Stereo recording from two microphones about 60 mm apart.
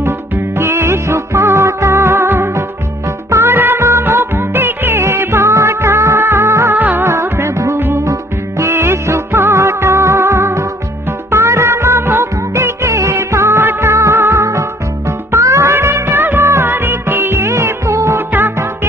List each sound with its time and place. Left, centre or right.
0.6 s music: right
6.7 s music: right
7.1 s music: right